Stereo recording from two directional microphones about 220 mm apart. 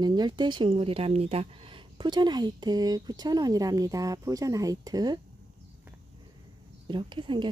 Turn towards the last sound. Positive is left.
turn(degrees=-20)  # may be behind; listen again after turning